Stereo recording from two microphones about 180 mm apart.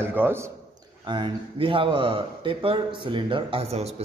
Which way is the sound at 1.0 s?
25° right (ahead or behind).